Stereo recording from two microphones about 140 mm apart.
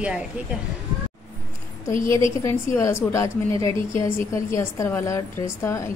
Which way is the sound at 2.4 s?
20° left (ahead or behind).